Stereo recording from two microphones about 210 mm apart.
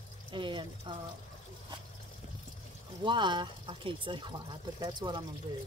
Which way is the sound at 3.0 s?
20° right (ahead or behind).